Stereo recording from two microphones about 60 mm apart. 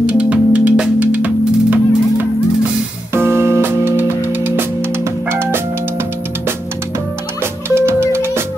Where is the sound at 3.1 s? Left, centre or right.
Right.